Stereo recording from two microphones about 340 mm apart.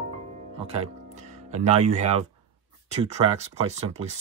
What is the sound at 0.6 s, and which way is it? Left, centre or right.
Music, centre.